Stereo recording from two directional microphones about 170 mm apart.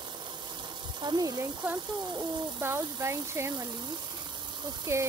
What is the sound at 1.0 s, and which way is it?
Speech, 25° right (ahead or behind).